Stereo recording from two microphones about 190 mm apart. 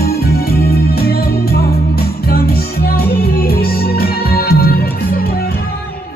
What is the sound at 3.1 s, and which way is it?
Music, 55° left (ahead or behind).